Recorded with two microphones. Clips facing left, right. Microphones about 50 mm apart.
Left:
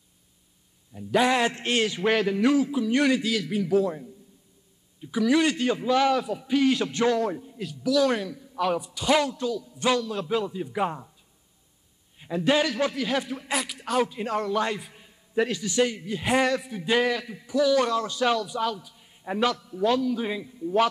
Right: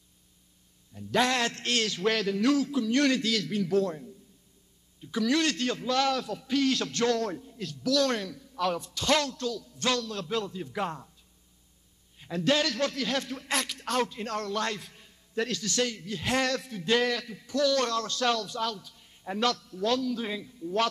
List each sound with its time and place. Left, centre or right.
0.9 s a man's voice: centre
12.2 s a man's voice: centre